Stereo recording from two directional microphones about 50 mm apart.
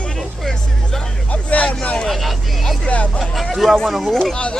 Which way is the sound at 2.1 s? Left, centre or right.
Centre.